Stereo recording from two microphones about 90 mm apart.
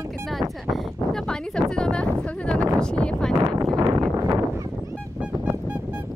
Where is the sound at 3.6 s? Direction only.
50° right (ahead or behind).